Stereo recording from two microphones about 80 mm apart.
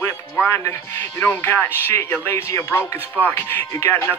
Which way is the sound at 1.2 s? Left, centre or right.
Left.